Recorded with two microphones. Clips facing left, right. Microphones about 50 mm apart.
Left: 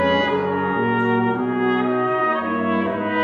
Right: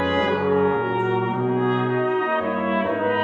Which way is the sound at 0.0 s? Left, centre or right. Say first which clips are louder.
Left 2 dB; left.